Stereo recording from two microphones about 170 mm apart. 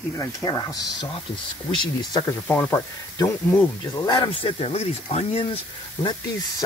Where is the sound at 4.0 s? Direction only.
30° left (ahead or behind).